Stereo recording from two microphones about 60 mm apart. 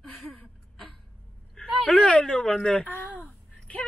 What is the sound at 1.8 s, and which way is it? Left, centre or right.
Speech, left.